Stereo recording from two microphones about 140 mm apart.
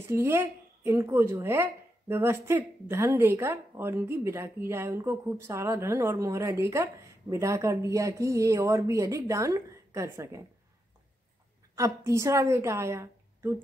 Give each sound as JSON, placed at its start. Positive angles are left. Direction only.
{"t": 0.1, "sound": "a woman's voice", "side_deg": -20}
{"t": 11.7, "sound": "a woman's voice", "side_deg": -20}